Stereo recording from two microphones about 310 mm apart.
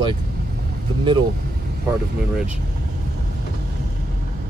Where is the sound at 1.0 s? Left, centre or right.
Centre.